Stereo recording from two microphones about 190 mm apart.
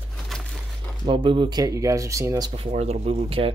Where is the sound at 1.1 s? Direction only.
25° right (ahead or behind).